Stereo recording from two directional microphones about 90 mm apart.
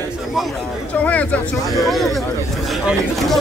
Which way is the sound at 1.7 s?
Centre (ahead or behind).